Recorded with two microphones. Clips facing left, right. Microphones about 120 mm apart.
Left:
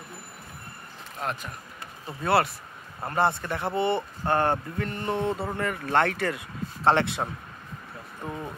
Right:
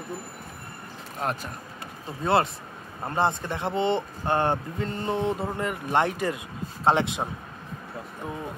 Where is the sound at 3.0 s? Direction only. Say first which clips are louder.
Even; 20° right (ahead or behind).